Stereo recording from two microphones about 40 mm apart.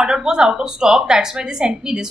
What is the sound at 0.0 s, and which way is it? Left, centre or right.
A woman's voice, centre.